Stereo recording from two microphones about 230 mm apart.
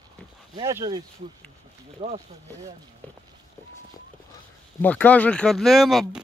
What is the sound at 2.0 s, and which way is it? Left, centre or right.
Speech, right.